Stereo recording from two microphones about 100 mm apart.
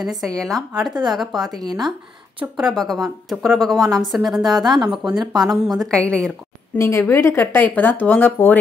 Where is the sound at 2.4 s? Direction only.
20° right (ahead or behind).